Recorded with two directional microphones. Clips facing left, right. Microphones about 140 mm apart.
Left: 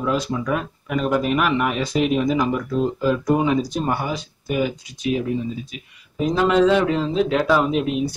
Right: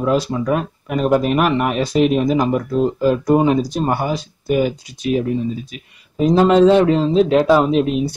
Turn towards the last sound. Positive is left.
turn(degrees=-30)  # may be behind; listen again after turning